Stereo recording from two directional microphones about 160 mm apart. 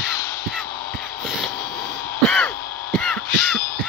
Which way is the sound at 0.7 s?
65° left (ahead or behind).